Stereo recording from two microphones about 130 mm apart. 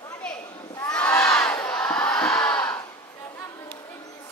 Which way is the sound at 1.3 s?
5° left (ahead or behind).